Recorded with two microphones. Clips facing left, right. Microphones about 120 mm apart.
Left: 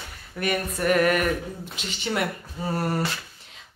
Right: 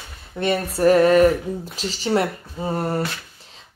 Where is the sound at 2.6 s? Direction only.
20° right (ahead or behind).